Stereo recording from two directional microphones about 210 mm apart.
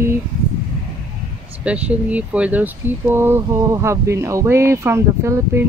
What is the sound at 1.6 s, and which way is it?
Speech, 5° right (ahead or behind).